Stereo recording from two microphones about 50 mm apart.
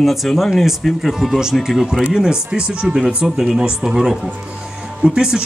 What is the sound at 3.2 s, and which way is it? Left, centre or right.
Speech, centre.